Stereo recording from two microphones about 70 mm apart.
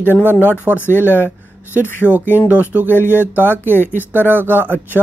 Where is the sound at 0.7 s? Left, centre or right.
Left.